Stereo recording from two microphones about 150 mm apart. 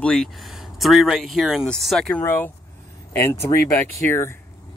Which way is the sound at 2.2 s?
15° left (ahead or behind).